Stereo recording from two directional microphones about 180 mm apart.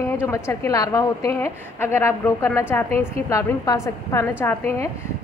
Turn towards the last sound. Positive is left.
turn(degrees=10)  # may be behind; listen again after turning